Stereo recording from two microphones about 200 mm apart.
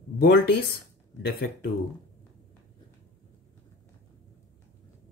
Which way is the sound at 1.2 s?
50° left (ahead or behind).